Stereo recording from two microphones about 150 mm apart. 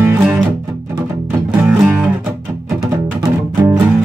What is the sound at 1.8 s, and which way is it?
Music, 10° right (ahead or behind).